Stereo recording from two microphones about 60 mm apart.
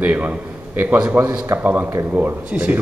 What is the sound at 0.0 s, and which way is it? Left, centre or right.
A man's voice, right.